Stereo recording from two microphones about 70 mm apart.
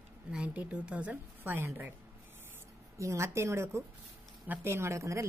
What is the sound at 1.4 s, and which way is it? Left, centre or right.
Speech, right.